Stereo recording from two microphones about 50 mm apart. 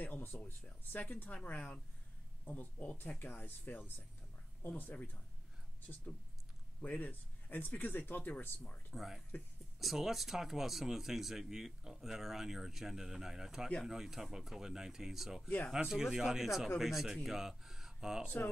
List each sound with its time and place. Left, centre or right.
0.0 s speech: left
6.8 s speech: left
8.9 s speech: centre